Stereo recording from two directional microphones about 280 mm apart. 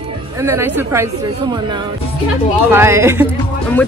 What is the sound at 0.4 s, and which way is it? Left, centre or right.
Speech, centre.